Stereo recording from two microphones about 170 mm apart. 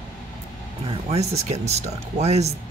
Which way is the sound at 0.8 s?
35° right (ahead or behind).